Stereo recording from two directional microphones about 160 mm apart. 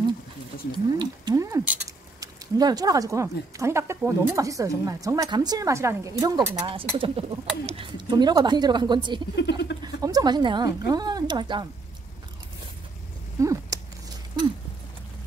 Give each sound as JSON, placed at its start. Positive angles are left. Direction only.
{"t": 0.7, "sound": "speech", "side_deg": -25}
{"t": 9.3, "sound": "speech", "side_deg": 90}
{"t": 9.8, "sound": "a woman's voice", "side_deg": -25}
{"t": 13.4, "sound": "a sound", "side_deg": -20}